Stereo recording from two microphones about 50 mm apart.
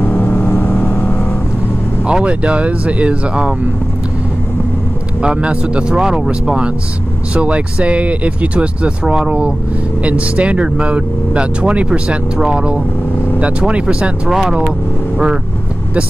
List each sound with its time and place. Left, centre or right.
0.0 s vehicle: left
2.0 s speech: right
5.2 s speech: right
9.0 s speech: centre
10.0 s speech: right
12.4 s speech: centre
13.4 s speech: right